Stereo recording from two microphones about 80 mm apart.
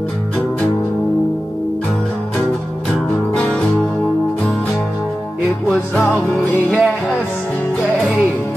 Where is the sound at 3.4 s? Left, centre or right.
Centre.